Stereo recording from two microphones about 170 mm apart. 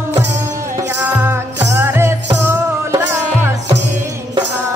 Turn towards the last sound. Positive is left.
turn(degrees=-15)  # may be behind; listen again after turning